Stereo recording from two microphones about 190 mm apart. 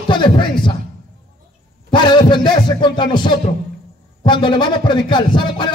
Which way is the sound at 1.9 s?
25° left (ahead or behind).